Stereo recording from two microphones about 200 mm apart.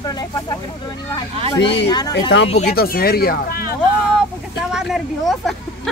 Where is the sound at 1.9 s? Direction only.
20° left (ahead or behind).